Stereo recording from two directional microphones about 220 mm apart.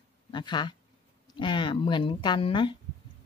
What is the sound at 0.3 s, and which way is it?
Speech, 20° left (ahead or behind).